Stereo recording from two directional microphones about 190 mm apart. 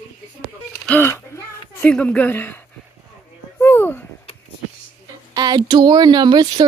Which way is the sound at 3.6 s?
10° left (ahead or behind).